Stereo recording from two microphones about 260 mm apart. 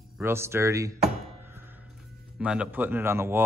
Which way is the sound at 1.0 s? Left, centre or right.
Centre.